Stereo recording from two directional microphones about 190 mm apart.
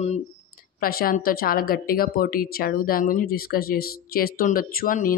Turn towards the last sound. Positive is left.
turn(degrees=45)  # may be behind; listen again after turning